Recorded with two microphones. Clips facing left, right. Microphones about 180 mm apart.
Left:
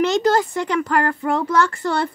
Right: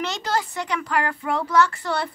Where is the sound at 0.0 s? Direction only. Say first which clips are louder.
Left 9 dB; 50° left (ahead or behind).